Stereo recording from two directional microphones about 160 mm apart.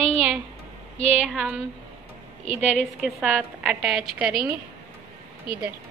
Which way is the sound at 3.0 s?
5° right (ahead or behind).